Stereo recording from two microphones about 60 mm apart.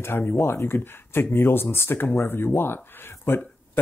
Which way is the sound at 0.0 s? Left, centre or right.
Left.